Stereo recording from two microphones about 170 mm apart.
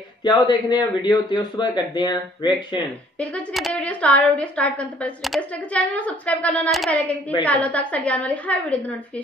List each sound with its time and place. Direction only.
0.2 s a man's voice: 25° left (ahead or behind)
3.2 s a woman's voice: 10° left (ahead or behind)